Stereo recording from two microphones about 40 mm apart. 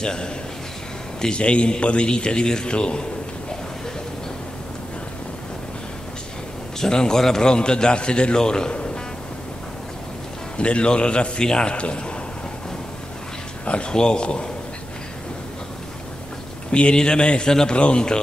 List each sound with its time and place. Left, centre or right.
0.0 s a man's voice: left
6.8 s a man's voice: centre
10.6 s a man's voice: left
13.7 s a man's voice: left
16.7 s a man's voice: left